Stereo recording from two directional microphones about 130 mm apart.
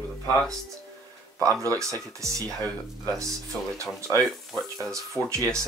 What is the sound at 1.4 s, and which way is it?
Speech, 25° right (ahead or behind).